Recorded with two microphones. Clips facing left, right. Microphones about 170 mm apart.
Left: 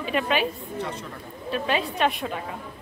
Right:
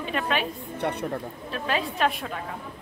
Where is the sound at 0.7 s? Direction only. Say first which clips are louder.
Right 3 dB; 65° right (ahead or behind).